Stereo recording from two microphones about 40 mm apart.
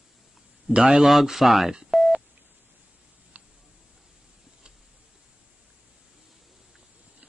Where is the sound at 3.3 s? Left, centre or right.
Right.